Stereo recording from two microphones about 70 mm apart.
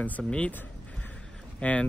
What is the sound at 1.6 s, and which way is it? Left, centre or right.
Speech, left.